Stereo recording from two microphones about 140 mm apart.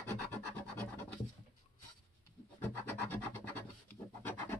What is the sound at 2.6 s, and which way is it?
Rub, 15° left (ahead or behind).